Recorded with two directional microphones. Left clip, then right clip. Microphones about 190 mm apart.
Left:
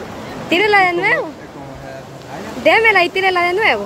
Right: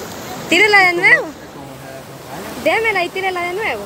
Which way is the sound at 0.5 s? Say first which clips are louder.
Right 2 dB; centre (ahead or behind).